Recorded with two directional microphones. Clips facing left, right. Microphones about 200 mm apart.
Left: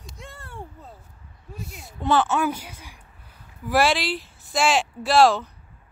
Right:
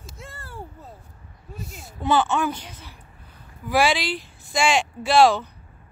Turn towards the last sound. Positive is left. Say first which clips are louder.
# right 1 dB
turn(degrees=0)  # may be behind; listen again after turning